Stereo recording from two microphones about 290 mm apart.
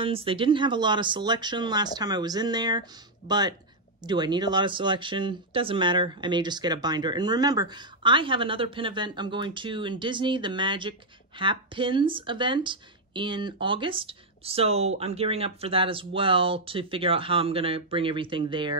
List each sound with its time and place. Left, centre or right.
0.0 s speech: centre